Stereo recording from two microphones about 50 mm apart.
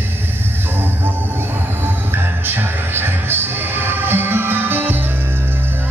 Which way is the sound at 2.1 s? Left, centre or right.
Right.